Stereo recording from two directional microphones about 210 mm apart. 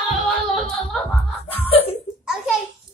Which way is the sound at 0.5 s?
Centre (ahead or behind).